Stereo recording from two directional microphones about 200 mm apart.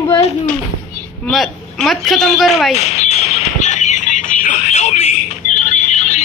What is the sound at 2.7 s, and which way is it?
Music, 35° left (ahead or behind).